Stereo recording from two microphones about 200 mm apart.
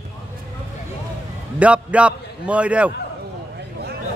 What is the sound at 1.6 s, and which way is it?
Speech, 5° right (ahead or behind).